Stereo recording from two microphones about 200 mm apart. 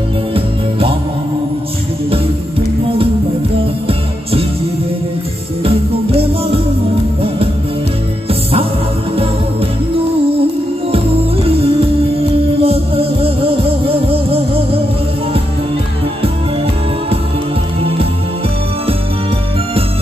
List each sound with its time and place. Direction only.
0.3 s music: 30° right (ahead or behind)
5.6 s music: 30° right (ahead or behind)
11.4 s music: 30° right (ahead or behind)